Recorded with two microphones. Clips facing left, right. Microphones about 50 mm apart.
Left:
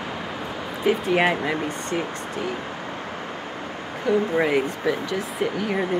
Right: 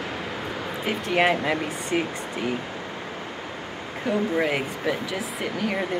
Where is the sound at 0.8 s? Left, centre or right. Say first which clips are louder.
Left 3 dB; centre.